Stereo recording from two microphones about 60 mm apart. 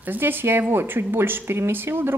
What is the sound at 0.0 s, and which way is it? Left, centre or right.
Speech, right.